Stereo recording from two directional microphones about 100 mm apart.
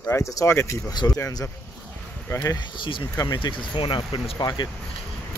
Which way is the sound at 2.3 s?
30° left (ahead or behind).